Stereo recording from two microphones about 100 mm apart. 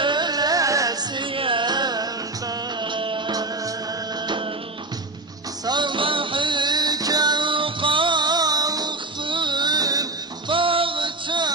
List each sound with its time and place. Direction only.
0.0 s music: 50° right (ahead or behind)
1.1 s carnatic music: 60° right (ahead or behind)
2.8 s music: 55° right (ahead or behind)
5.7 s music: 50° right (ahead or behind)
9.2 s music: 55° right (ahead or behind)
10.5 s a sound: 60° right (ahead or behind)